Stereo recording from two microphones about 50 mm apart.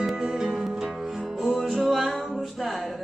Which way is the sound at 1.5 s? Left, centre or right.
Centre.